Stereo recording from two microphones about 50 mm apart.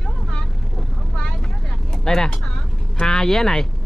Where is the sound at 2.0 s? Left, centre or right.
Centre.